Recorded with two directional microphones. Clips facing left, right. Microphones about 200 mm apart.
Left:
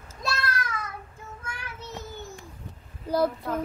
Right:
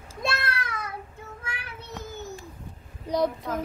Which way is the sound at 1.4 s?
60° right (ahead or behind).